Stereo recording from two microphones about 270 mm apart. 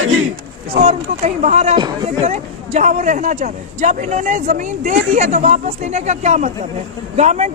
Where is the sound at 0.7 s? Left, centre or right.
Right.